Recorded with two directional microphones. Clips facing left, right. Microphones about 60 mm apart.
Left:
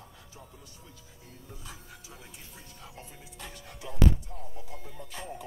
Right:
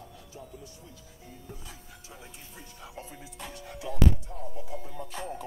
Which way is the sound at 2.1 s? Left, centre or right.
Centre.